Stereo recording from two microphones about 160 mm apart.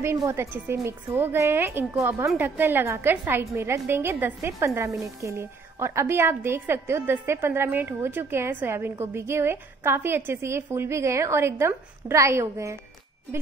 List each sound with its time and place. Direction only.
0.0 s a woman's voice: 15° right (ahead or behind)